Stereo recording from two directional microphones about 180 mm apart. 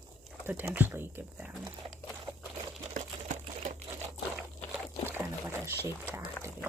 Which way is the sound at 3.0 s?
40° right (ahead or behind).